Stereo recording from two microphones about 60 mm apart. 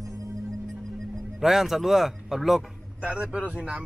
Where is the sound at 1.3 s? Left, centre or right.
Centre.